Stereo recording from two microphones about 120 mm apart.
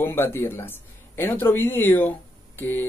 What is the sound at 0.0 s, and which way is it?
Speech, 20° left (ahead or behind).